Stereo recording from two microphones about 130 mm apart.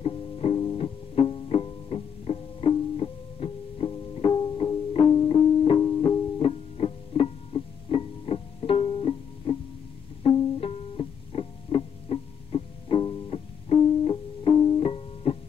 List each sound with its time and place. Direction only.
0.0 s music: 50° left (ahead or behind)
3.9 s music: 35° left (ahead or behind)
10.2 s pizzicato: 50° left (ahead or behind)
10.6 s music: 50° left (ahead or behind)